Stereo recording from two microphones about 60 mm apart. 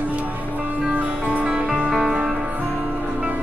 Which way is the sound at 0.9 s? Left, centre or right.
Right.